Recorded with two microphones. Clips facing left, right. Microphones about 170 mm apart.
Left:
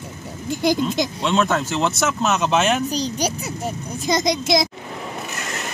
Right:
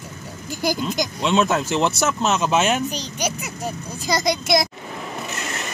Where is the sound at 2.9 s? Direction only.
35° left (ahead or behind).